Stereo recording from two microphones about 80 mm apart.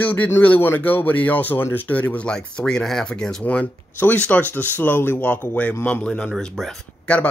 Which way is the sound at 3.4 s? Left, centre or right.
Centre.